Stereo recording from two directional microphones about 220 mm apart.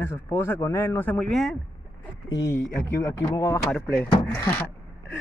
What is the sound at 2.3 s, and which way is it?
Speech, 15° left (ahead or behind).